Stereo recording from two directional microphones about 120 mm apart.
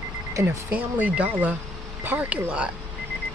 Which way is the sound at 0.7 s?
10° right (ahead or behind).